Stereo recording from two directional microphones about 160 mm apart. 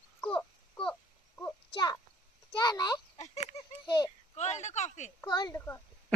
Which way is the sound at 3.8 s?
25° left (ahead or behind).